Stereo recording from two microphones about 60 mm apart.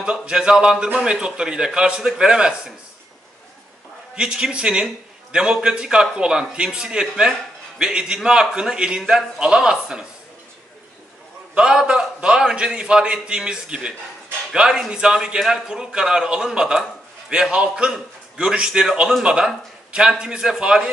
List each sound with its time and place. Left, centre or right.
0.0 s a man's voice: centre
4.1 s a man's voice: centre
11.5 s a man's voice: centre